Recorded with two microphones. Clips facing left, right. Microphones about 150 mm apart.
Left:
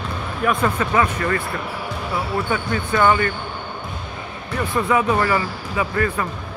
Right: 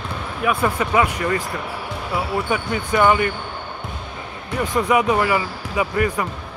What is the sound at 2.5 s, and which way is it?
Speech, 15° right (ahead or behind).